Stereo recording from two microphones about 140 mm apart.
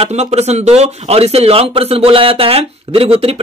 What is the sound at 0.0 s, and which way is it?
Speech, 50° right (ahead or behind).